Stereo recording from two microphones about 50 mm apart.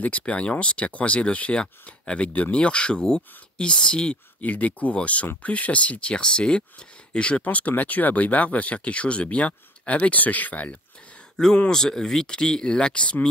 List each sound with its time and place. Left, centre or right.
0.0 s speech: left
4.4 s speech: left
7.4 s speech: left
11.4 s speech: centre